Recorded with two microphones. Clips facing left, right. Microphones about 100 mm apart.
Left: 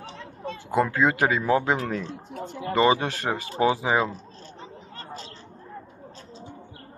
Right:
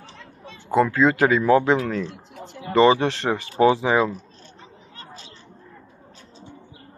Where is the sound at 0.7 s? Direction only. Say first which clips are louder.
Right 4 dB; 20° left (ahead or behind).